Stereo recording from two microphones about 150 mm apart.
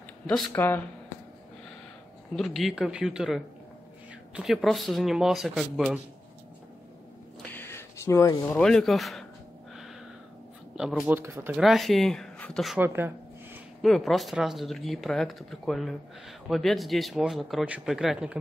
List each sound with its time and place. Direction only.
0.5 s speech: 15° left (ahead or behind)
2.3 s speech: centre (ahead or behind)
7.5 s a sound: 15° left (ahead or behind)
8.5 s speech: 5° left (ahead or behind)
10.8 s speech: 5° right (ahead or behind)
11.1 s speech: 15° right (ahead or behind)
11.5 s speech: centre (ahead or behind)
12.7 s a sound: 15° right (ahead or behind)
13.8 s speech: centre (ahead or behind)